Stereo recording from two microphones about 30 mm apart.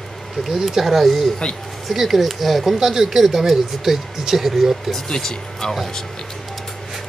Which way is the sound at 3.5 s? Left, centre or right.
Centre.